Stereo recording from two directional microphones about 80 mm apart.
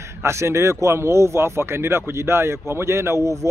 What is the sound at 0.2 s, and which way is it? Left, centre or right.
Speech, right.